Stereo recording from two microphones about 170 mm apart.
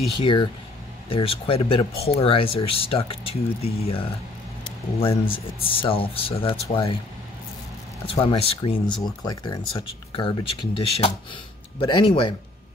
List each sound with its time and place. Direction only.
0.2 s speech: 30° left (ahead or behind)
5.3 s speech: 30° left (ahead or behind)
8.1 s speech: 35° left (ahead or behind)